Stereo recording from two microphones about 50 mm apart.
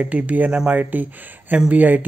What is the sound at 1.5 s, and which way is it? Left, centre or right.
Speech, right.